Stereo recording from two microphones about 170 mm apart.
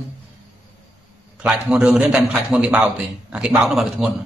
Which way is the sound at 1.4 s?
5° right (ahead or behind).